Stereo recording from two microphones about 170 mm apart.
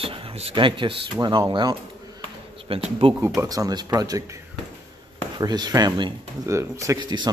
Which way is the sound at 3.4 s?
20° right (ahead or behind).